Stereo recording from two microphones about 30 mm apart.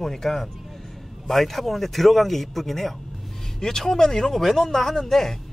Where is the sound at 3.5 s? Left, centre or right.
Centre.